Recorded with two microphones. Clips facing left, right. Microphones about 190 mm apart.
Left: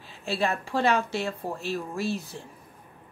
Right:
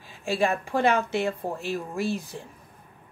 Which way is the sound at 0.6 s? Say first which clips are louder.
Right 1 dB; 15° right (ahead or behind).